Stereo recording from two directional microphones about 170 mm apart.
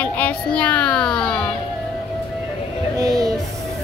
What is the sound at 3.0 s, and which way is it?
Music, 20° right (ahead or behind).